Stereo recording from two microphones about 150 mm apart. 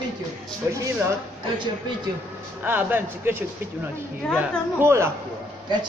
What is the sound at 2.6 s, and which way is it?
Speech, 10° right (ahead or behind).